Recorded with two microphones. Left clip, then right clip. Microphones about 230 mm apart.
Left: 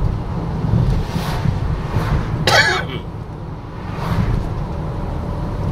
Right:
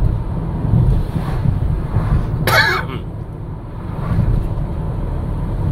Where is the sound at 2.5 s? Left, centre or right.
Centre.